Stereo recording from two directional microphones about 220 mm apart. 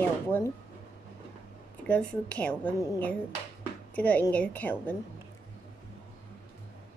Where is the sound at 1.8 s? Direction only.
5° left (ahead or behind).